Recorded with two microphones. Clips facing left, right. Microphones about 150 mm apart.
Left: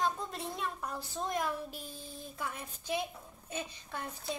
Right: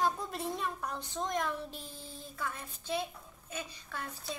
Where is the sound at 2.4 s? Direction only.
15° left (ahead or behind).